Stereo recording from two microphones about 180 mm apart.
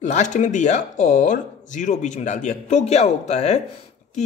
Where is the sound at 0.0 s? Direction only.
40° left (ahead or behind).